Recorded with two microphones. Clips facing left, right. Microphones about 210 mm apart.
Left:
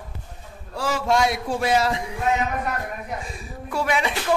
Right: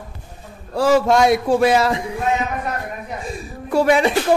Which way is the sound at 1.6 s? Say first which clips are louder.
Right 5 dB; 65° right (ahead or behind).